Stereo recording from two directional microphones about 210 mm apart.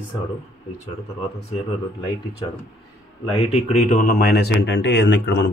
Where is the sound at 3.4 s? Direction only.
30° left (ahead or behind).